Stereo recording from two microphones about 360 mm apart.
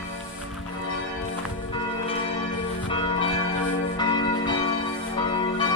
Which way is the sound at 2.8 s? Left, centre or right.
Centre.